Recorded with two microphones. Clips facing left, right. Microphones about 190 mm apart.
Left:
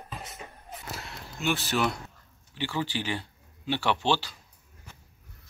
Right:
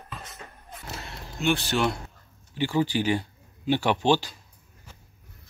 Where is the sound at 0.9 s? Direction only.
Centre (ahead or behind).